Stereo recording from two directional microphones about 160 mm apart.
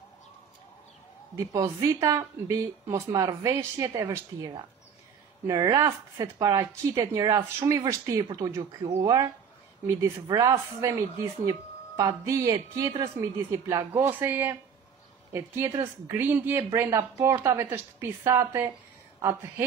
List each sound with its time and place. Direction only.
1.3 s speech: 20° right (ahead or behind)
5.5 s a woman's voice: 20° right (ahead or behind)